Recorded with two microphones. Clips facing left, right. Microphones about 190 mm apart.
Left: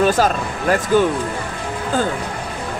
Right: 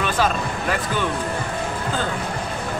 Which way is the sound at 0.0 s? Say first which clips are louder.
Left 5 dB; 40° left (ahead or behind).